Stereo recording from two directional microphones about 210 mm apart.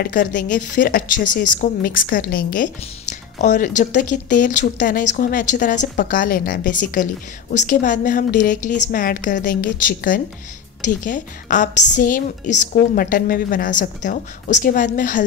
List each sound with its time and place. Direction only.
0.0 s a woman's voice: 40° left (ahead or behind)